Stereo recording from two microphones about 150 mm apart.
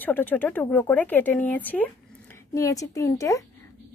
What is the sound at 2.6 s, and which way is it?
Speech, 20° left (ahead or behind).